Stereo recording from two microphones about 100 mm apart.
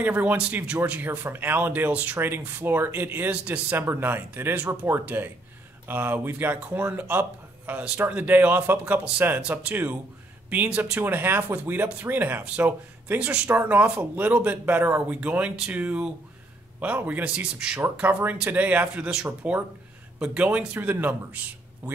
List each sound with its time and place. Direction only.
0.0 s speech: 15° right (ahead or behind)